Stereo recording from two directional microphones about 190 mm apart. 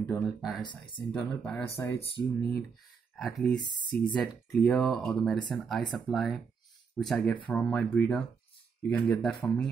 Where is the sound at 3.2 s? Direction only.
Centre (ahead or behind).